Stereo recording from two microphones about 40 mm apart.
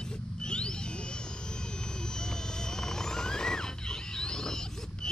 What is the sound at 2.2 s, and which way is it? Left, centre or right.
Music, centre.